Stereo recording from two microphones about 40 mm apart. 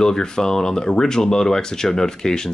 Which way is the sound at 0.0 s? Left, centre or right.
Centre.